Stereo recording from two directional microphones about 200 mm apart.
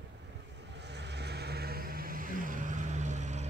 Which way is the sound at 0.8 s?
60° right (ahead or behind).